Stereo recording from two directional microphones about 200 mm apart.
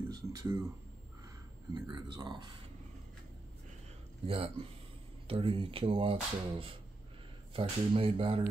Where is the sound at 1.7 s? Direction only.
25° right (ahead or behind).